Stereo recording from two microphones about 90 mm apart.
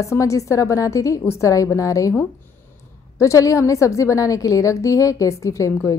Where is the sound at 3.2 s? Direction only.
35° left (ahead or behind).